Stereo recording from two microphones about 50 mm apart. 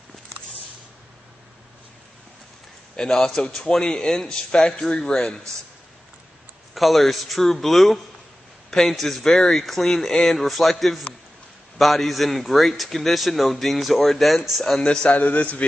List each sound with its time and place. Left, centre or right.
3.0 s a man's voice: centre
6.7 s a man's voice: centre
14.8 s a man's voice: centre